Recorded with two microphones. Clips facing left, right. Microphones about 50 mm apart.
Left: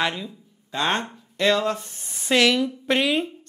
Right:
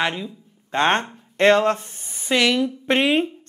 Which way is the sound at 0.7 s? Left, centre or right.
Right.